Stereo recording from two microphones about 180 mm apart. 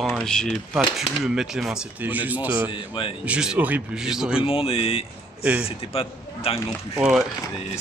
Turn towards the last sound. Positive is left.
turn(degrees=-5)  # may be behind; listen again after turning